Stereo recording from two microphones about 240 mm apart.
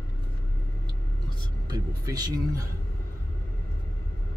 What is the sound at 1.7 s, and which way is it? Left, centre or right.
Speech, centre.